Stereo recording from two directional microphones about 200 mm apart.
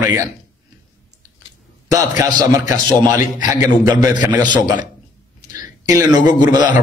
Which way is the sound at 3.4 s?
40° left (ahead or behind).